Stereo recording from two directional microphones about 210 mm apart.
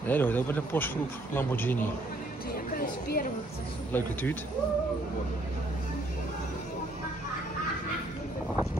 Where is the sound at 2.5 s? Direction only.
45° left (ahead or behind).